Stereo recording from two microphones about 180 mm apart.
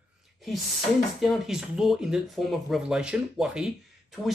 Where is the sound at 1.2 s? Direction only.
Centre (ahead or behind).